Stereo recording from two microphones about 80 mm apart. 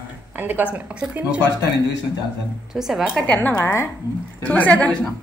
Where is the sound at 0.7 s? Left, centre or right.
Centre.